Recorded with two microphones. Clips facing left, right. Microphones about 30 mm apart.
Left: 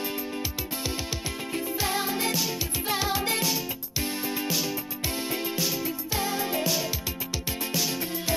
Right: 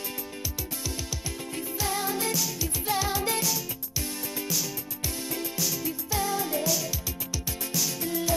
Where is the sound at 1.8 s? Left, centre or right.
Left.